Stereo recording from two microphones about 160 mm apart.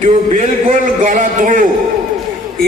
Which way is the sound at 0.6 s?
55° right (ahead or behind).